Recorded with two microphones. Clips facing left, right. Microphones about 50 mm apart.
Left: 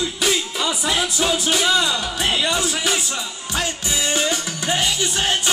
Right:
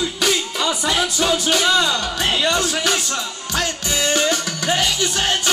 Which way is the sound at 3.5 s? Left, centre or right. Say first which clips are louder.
Right 2 dB; centre.